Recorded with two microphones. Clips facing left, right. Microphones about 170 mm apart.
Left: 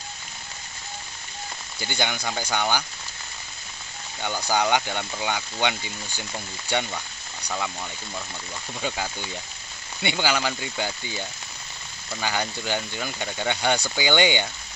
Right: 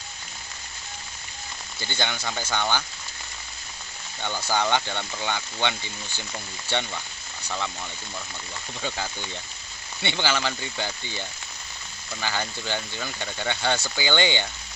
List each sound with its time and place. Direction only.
1.8 s speech: 15° left (ahead or behind)
4.2 s speech: 15° left (ahead or behind)
8.8 s speech: 15° left (ahead or behind)